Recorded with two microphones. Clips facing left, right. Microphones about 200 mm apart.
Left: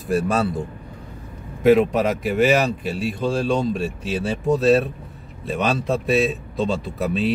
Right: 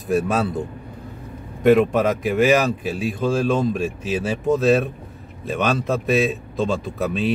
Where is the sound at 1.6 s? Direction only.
Centre (ahead or behind).